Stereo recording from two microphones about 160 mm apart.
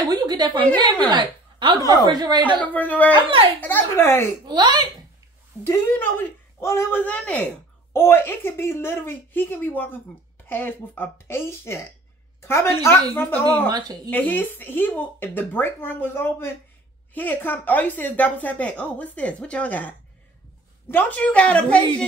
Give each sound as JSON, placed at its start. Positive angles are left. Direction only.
{"t": 0.0, "sound": "a sound", "side_deg": -25}
{"t": 1.0, "sound": "a woman's voice", "side_deg": -30}
{"t": 2.6, "sound": "a woman's voice", "side_deg": 10}
{"t": 4.5, "sound": "a woman's voice", "side_deg": -25}
{"t": 5.6, "sound": "a woman's voice", "side_deg": 15}
{"t": 13.7, "sound": "a woman's voice", "side_deg": -25}
{"t": 14.1, "sound": "a woman's voice", "side_deg": 10}
{"t": 20.9, "sound": "a woman's voice", "side_deg": 10}